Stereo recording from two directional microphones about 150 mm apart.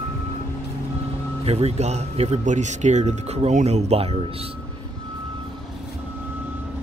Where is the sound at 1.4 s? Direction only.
45° right (ahead or behind).